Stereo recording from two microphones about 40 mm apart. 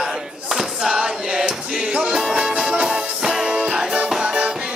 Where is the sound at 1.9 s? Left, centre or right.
Right.